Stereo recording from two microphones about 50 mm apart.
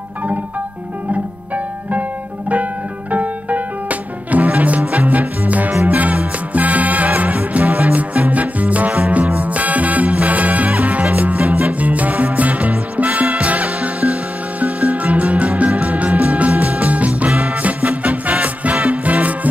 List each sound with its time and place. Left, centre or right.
1.1 s music: right